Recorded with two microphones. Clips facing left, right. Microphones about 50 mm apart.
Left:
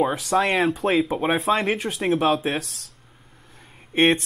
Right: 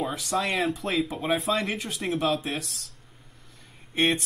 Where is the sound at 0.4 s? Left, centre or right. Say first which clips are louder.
Left 6 dB; left.